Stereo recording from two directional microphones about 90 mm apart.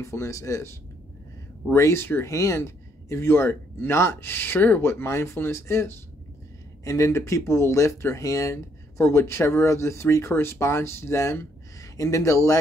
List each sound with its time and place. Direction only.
0.0 s speech: 35° left (ahead or behind)
1.7 s speech: 30° left (ahead or behind)